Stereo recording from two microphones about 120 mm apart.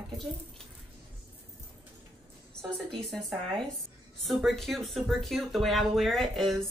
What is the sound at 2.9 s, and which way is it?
Speech, 5° left (ahead or behind).